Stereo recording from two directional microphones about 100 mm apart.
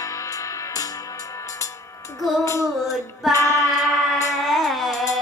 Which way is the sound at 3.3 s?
30° left (ahead or behind).